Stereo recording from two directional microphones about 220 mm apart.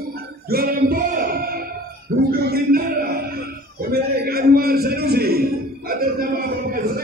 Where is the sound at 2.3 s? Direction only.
45° right (ahead or behind).